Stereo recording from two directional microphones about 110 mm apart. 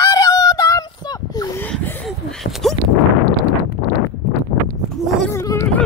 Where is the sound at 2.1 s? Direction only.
Centre (ahead or behind).